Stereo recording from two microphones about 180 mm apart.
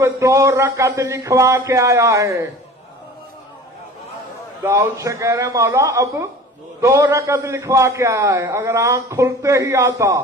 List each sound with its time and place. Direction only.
0.0 s a man's voice: 15° right (ahead or behind)
4.6 s a man's voice: 15° right (ahead or behind)